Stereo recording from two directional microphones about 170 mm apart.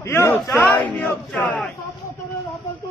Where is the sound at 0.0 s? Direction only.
15° left (ahead or behind).